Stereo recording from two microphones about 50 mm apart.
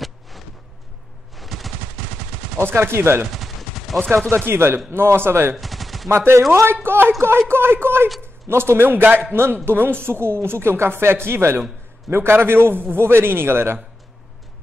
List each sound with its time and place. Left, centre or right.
1.3 s machine gun: centre
2.6 s a woman's voice: right
3.3 s gunshot: centre
4.5 s a woman's voice: right
5.6 s gunshot: centre
6.0 s speech: right
6.7 s a woman's voice: right